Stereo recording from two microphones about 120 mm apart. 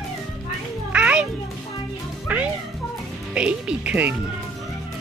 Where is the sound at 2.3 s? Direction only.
15° right (ahead or behind).